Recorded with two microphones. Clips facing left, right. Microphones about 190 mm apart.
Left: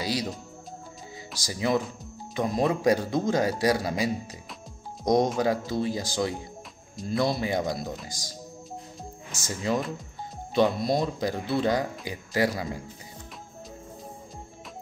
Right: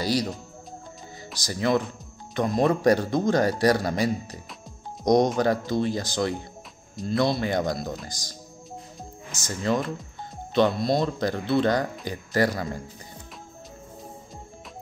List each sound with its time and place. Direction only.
0.0 s speech: 5° left (ahead or behind)
1.3 s a man's voice: 10° left (ahead or behind)
9.3 s speech: 10° left (ahead or behind)